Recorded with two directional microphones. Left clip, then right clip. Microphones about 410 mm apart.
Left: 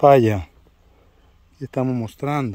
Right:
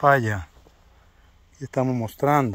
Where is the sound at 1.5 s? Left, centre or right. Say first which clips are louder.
Left 1 dB; centre.